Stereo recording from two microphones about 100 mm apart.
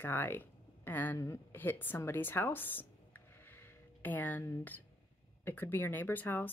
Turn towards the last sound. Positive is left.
turn(degrees=20)  # may be behind; listen again after turning